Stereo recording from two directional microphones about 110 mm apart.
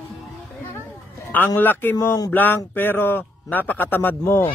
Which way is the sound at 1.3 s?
20° left (ahead or behind).